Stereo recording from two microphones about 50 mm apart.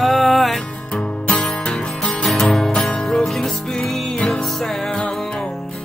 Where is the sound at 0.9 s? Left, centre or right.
Centre.